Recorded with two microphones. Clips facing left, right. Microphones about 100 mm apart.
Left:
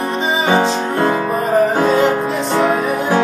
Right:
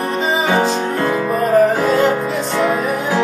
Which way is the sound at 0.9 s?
25° left (ahead or behind).